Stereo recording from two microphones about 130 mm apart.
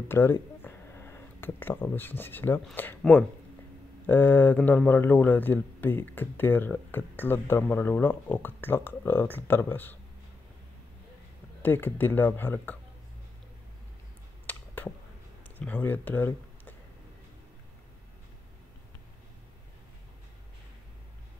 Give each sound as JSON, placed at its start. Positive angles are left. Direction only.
{"t": 0.1, "sound": "speech", "side_deg": 15}
{"t": 11.6, "sound": "speech", "side_deg": 15}
{"t": 14.4, "sound": "a sound", "side_deg": 15}
{"t": 15.5, "sound": "speech", "side_deg": 15}